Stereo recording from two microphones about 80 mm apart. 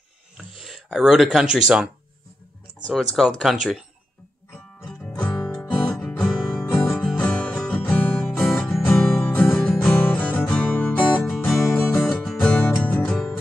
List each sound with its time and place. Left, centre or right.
0.4 s speech: centre
2.9 s speech: centre
5.2 s music: centre
6.6 s music: left
6.9 s music: centre
10.1 s music: centre
11.3 s music: centre
11.6 s music: left
12.3 s music: centre
12.8 s music: left